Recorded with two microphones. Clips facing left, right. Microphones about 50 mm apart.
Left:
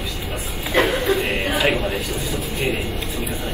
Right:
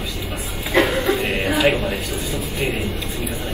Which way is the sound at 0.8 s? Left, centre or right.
Left.